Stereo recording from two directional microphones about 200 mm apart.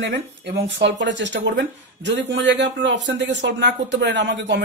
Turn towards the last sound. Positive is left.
turn(degrees=-60)  # may be behind; listen again after turning